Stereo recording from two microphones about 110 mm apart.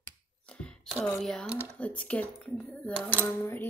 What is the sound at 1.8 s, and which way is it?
Speech, 10° left (ahead or behind).